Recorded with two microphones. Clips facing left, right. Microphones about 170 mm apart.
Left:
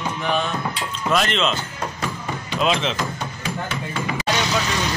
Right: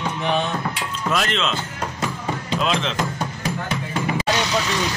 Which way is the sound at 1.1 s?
Centre (ahead or behind).